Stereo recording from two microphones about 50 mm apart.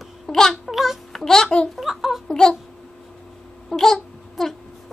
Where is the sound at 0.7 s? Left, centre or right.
Centre.